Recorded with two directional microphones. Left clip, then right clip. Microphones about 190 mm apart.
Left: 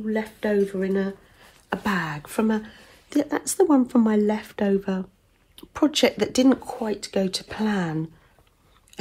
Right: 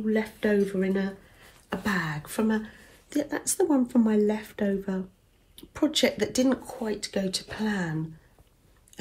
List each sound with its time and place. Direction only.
0.0 s speech: 10° left (ahead or behind)
1.7 s speech: 30° left (ahead or behind)